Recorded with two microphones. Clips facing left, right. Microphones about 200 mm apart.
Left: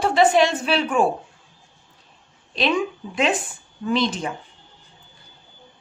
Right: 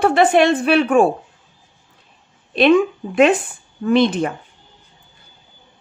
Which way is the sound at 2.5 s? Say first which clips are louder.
Right 9 dB; 60° right (ahead or behind).